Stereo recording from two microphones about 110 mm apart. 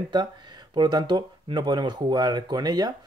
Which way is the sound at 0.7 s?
40° right (ahead or behind).